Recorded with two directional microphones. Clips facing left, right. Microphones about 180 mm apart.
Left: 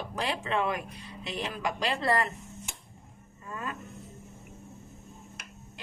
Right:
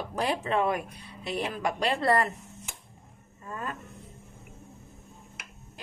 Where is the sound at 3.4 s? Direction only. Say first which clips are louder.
Right 1 dB; 45° right (ahead or behind).